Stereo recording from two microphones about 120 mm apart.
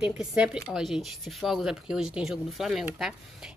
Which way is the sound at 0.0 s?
5° right (ahead or behind).